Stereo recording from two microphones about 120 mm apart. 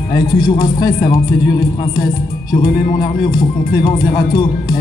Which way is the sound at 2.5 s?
35° left (ahead or behind).